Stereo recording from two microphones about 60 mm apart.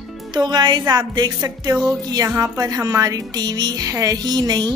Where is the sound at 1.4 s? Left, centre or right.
Right.